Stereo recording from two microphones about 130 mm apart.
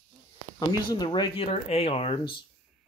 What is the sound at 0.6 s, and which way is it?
Speech, 30° left (ahead or behind).